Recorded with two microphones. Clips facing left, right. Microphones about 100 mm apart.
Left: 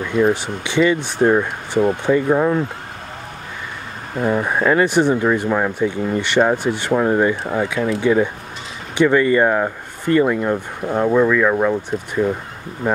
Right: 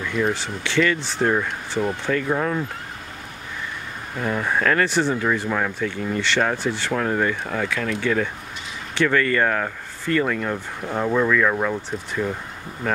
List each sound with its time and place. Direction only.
0.0 s speech: 20° left (ahead or behind)
0.9 s speech: 55° left (ahead or behind)
1.2 s speech: 20° left (ahead or behind)
4.2 s speech: 25° left (ahead or behind)